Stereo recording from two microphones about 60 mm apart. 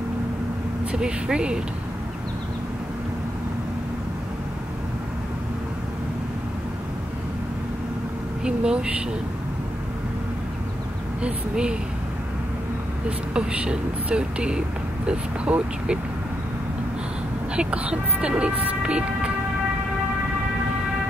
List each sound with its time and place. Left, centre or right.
0.9 s speech: centre
8.5 s speech: centre
11.2 s speech: centre
13.3 s speech: centre
17.6 s speech: centre